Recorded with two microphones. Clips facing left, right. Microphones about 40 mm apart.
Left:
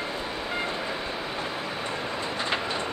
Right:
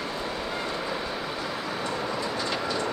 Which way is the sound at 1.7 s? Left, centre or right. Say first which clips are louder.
Right 1 dB; left.